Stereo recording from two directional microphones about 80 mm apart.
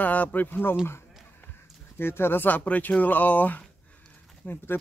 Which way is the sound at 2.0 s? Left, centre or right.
Left.